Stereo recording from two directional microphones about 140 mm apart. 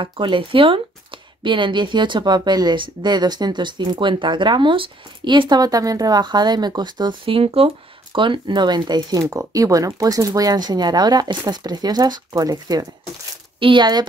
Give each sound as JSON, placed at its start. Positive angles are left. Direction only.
{"t": 0.0, "sound": "speech", "side_deg": -35}